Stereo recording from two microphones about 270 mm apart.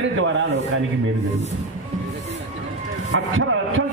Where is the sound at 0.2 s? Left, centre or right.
Right.